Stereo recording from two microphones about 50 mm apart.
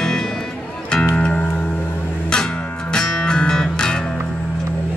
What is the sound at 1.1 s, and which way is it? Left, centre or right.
Music, left.